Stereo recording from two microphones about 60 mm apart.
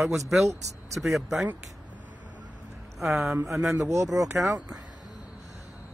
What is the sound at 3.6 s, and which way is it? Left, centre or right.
Speech, centre.